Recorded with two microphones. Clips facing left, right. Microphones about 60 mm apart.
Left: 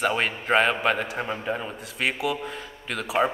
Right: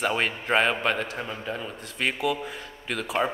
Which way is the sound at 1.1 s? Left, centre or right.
Left.